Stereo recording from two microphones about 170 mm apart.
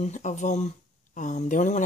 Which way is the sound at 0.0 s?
45° left (ahead or behind).